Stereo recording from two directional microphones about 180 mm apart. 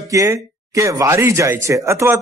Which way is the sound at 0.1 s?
20° right (ahead or behind).